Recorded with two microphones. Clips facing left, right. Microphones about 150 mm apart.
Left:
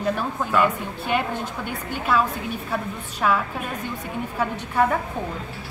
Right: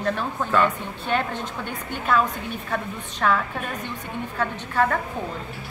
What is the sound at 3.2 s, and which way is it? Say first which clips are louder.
A woman's voice: even; 10° left (ahead or behind).